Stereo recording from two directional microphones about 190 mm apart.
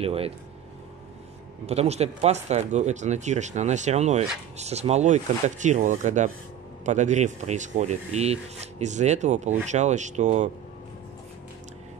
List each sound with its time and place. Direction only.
0.0 s speech: 30° right (ahead or behind)
1.7 s speech: 35° right (ahead or behind)